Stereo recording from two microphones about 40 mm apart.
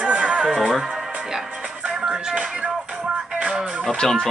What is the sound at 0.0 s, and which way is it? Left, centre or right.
Music, right.